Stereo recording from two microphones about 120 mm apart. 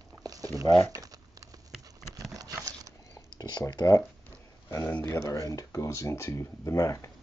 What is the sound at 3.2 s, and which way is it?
Speech, 30° left (ahead or behind).